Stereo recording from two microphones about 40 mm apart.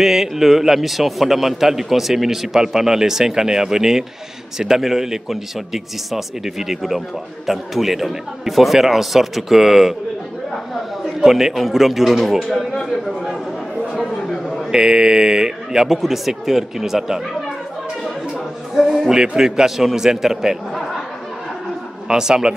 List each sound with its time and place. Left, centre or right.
0.0 s a man's voice: centre
11.1 s a man's voice: centre
14.2 s a sound: centre
14.7 s a man's voice: centre
19.0 s a man's voice: centre
22.0 s a man's voice: centre